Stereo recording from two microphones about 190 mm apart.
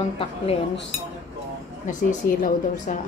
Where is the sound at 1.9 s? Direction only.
40° left (ahead or behind).